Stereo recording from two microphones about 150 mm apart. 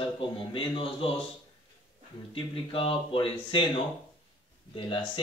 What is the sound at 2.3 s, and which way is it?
Speech, 35° left (ahead or behind).